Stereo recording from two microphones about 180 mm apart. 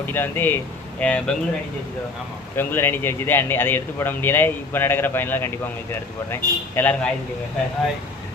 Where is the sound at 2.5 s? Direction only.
10° left (ahead or behind).